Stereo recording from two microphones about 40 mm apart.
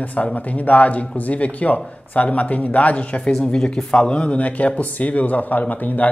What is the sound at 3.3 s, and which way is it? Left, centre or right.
Speech, centre.